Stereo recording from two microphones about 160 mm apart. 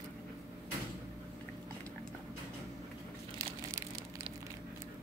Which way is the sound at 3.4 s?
20° right (ahead or behind).